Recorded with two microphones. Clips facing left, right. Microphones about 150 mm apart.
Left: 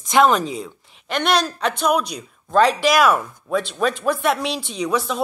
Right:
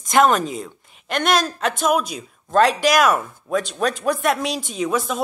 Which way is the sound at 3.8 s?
40° right (ahead or behind).